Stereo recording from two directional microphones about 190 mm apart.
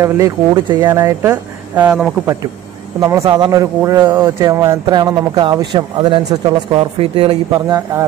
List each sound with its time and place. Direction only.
0.0 s speech: 20° right (ahead or behind)
3.0 s speech: 15° right (ahead or behind)
7.5 s speech: 15° right (ahead or behind)